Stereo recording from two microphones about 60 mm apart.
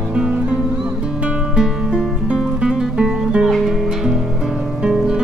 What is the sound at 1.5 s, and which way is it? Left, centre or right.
Music, centre.